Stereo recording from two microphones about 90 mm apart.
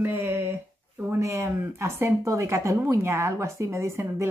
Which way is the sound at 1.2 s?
30° right (ahead or behind).